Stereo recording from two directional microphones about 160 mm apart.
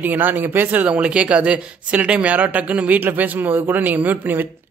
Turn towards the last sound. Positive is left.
turn(degrees=-10)  # may be behind; listen again after turning